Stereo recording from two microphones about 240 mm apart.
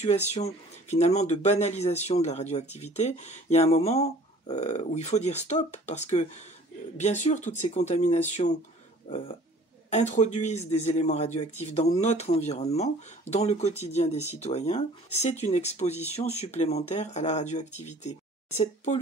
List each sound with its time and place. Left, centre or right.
0.0 s speech: left
9.8 s speech: left